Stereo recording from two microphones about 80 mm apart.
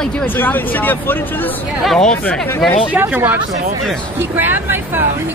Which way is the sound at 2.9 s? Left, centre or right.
Right.